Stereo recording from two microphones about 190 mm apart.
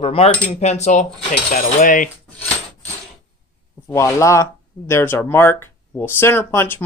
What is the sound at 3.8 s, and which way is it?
Speech, 15° left (ahead or behind).